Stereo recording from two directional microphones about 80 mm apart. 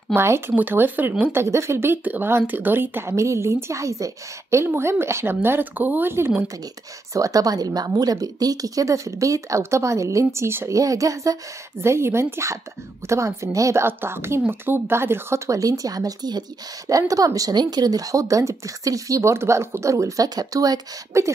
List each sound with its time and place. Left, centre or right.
0.1 s speech: right
0.6 s speech: right
1.3 s speech: right
7.2 s speech: right
10.7 s speech: right
11.8 s speech: right
13.8 s speech: right